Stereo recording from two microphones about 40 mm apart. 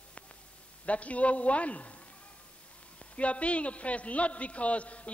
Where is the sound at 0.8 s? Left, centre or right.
Left.